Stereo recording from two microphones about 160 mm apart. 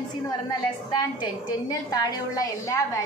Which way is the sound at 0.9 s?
25° left (ahead or behind).